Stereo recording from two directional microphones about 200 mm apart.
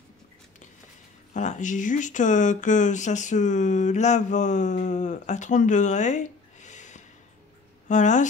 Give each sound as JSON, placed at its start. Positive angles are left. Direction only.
{"t": 1.3, "sound": "speech", "side_deg": 35}